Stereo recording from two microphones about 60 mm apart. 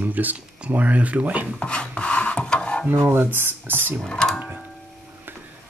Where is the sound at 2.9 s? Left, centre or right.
Right.